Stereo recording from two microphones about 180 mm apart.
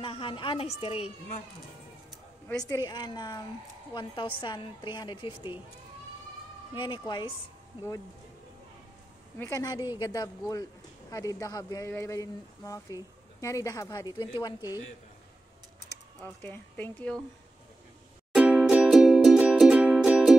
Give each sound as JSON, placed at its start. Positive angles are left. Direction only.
{"t": 0.0, "sound": "a woman's voice", "side_deg": 30}
{"t": 2.7, "sound": "a man's voice", "side_deg": 25}
{"t": 6.7, "sound": "a man's voice", "side_deg": 25}
{"t": 9.4, "sound": "a man's voice", "side_deg": 20}
{"t": 16.4, "sound": "speech", "side_deg": 10}
{"t": 18.3, "sound": "music", "side_deg": -5}